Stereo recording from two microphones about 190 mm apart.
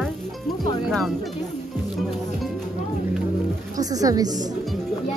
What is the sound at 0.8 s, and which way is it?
Speech, centre (ahead or behind).